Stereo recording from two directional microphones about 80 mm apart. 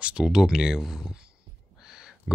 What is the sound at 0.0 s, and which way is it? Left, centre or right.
Speech, centre.